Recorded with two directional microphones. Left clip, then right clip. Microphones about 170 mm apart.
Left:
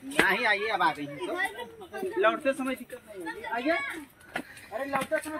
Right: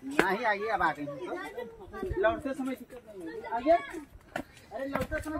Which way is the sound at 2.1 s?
35° left (ahead or behind).